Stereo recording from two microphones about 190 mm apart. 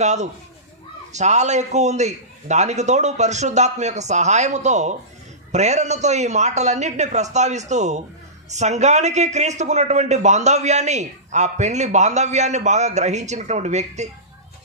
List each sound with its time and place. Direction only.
0.0 s a man's voice: 35° right (ahead or behind)